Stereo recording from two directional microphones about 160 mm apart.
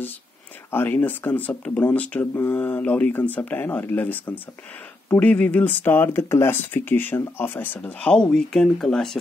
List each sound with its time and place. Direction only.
0.7 s speech: 10° left (ahead or behind)